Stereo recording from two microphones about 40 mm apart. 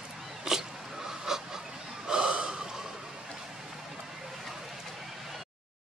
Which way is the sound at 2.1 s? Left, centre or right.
Right.